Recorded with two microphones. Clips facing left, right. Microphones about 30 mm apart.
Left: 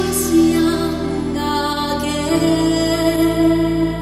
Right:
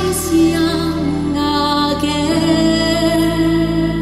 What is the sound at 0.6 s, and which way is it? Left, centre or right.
Music, right.